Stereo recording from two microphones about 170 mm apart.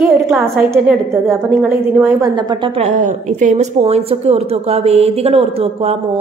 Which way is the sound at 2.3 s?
25° right (ahead or behind).